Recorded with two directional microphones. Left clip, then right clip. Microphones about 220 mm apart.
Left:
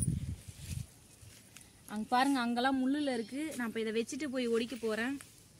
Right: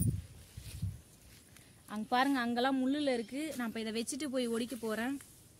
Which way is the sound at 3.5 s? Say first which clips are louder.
Left 6 dB; 55° right (ahead or behind).